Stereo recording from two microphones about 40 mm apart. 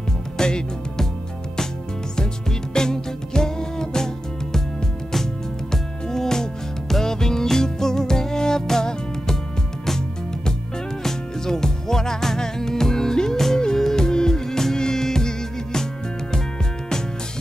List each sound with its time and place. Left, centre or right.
0.4 s music: centre
2.7 s music: centre